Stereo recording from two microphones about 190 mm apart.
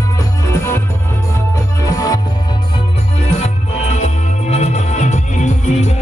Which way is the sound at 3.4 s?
35° left (ahead or behind).